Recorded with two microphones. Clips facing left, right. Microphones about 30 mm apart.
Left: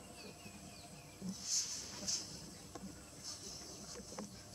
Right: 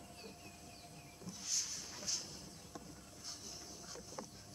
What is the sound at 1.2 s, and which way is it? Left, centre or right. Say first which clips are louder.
Music: left 5 dB; centre.